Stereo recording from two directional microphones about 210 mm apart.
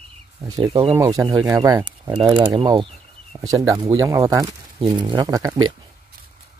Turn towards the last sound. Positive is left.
turn(degrees=-20)  # may be behind; listen again after turning